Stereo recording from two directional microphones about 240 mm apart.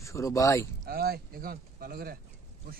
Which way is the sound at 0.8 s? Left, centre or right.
Right.